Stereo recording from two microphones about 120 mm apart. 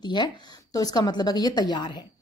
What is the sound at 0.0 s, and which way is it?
A woman's voice, 40° left (ahead or behind).